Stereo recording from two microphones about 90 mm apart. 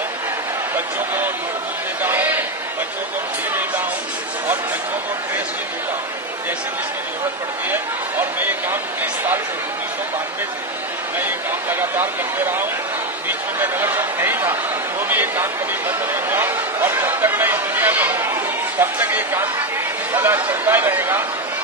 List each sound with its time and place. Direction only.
0.7 s speech: 20° right (ahead or behind)
7.7 s speech: 20° right (ahead or behind)
11.1 s speech: 25° right (ahead or behind)